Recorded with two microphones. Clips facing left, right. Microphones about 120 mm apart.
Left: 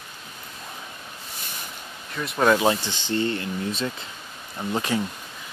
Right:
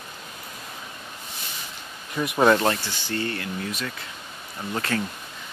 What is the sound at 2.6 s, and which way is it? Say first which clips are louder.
Speech: left 2 dB; 15° left (ahead or behind).